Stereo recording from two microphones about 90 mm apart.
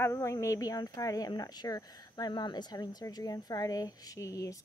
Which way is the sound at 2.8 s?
40° left (ahead or behind).